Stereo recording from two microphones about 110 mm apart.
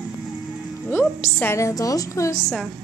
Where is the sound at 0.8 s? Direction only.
20° left (ahead or behind).